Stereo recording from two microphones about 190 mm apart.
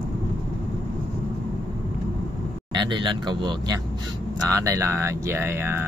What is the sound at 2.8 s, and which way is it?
Speech, 25° right (ahead or behind).